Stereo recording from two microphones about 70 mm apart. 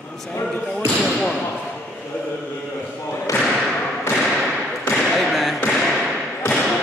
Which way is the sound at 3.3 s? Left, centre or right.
Left.